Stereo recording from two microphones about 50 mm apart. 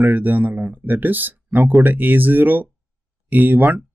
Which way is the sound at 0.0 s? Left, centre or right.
Right.